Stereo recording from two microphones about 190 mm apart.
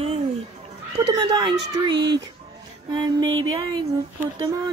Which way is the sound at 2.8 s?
20° right (ahead or behind).